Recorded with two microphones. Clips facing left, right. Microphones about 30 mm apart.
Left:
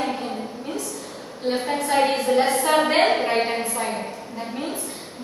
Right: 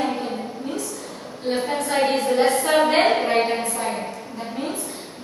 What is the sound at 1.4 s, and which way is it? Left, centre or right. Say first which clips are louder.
A woman's voice: even; centre.